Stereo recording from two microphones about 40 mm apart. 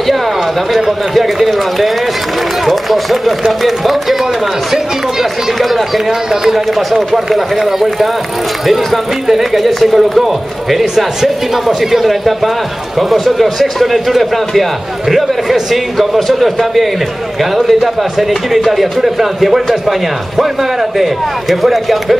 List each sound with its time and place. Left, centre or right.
0.7 s speech: centre
5.6 s speech: centre